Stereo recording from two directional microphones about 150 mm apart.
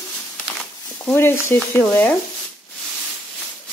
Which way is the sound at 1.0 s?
10° left (ahead or behind).